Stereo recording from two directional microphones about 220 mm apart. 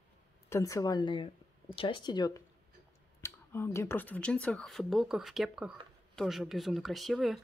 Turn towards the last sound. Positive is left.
turn(degrees=0)  # may be behind; listen again after turning